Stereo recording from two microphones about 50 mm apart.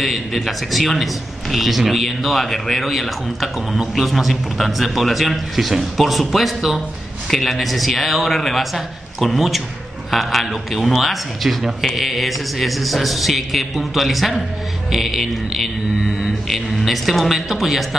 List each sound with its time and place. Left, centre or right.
0.0 s a man's voice: centre